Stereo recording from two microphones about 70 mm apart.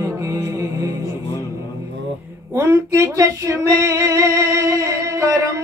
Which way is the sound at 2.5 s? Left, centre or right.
Right.